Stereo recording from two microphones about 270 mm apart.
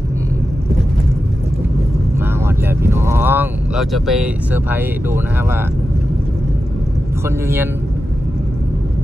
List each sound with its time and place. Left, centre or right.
2.8 s speech: centre
7.2 s speech: centre